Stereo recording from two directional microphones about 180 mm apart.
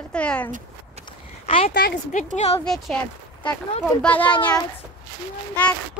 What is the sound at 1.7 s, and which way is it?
Speech, 50° left (ahead or behind).